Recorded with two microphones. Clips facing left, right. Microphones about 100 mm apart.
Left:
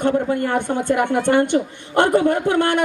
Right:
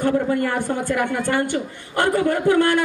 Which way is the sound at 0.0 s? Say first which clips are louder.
Left 1 dB; 25° left (ahead or behind).